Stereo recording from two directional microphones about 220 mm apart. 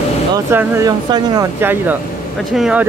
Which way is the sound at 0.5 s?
10° right (ahead or behind).